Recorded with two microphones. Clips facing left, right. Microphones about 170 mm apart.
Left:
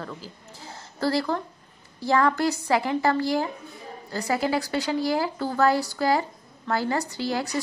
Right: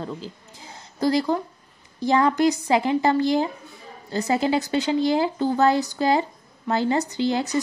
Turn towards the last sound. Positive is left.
turn(degrees=-20)  # may be behind; listen again after turning